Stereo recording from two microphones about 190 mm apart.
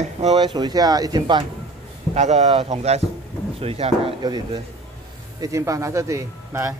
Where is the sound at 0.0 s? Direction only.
35° right (ahead or behind).